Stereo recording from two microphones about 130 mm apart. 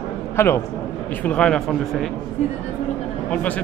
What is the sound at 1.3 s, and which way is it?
Speech, 5° left (ahead or behind).